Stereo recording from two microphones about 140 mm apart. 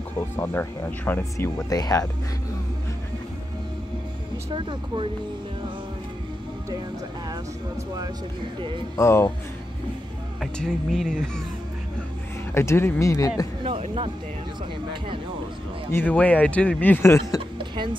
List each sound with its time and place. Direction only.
0.4 s speech: 15° left (ahead or behind)
4.5 s speech: 35° right (ahead or behind)
8.5 s speech: 35° right (ahead or behind)
8.9 s speech: 20° left (ahead or behind)
10.4 s speech: centre (ahead or behind)
12.5 s speech: 15° left (ahead or behind)
13.7 s speech: 40° right (ahead or behind)
15.9 s speech: 10° left (ahead or behind)